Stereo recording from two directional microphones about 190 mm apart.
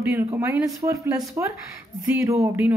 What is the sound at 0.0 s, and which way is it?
Speech, 10° right (ahead or behind).